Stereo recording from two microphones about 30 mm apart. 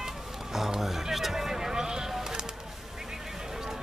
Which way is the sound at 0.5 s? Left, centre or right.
Centre.